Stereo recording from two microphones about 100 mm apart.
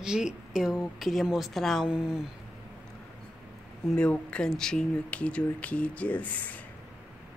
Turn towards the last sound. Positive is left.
turn(degrees=15)  # may be behind; listen again after turning